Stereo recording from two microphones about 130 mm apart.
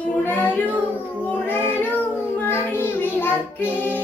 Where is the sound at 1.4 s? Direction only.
15° left (ahead or behind).